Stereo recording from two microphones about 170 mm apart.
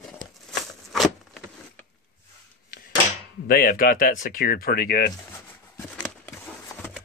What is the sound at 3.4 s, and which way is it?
Speech, 60° left (ahead or behind).